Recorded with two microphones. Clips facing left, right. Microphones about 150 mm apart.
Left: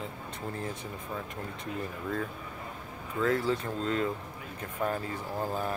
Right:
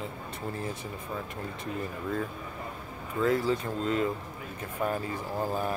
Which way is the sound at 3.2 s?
10° right (ahead or behind).